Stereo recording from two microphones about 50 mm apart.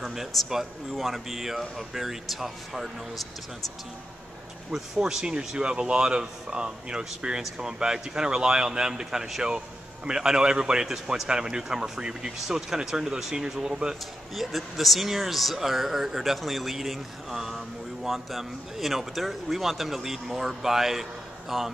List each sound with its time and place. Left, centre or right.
0.0 s speech: centre
4.7 s speech: centre
14.3 s speech: centre